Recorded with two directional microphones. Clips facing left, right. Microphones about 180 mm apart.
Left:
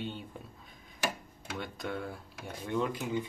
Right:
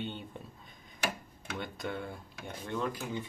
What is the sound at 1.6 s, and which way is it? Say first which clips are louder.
Speech: even; centre (ahead or behind).